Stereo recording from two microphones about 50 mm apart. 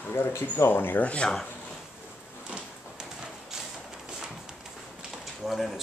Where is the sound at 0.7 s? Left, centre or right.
Left.